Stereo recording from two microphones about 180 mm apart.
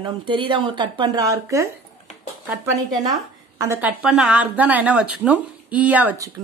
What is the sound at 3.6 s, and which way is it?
Speech, 15° right (ahead or behind).